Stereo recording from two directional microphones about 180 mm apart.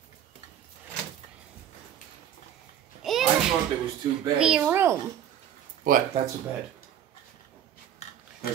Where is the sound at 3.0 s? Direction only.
Centre (ahead or behind).